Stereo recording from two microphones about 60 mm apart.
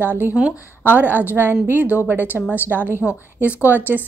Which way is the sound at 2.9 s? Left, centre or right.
Left.